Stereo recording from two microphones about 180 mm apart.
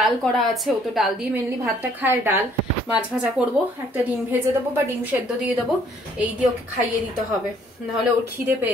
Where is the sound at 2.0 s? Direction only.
15° right (ahead or behind).